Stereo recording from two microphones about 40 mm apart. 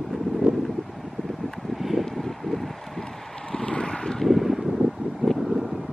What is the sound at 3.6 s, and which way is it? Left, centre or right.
Vehicle, left.